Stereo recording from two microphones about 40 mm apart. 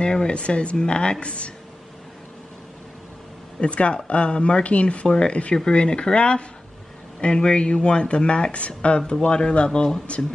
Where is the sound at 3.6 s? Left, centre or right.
Left.